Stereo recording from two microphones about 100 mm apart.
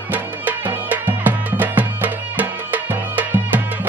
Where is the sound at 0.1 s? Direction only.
15° right (ahead or behind).